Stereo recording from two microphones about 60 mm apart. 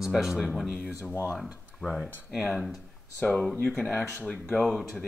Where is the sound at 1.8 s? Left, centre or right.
Centre.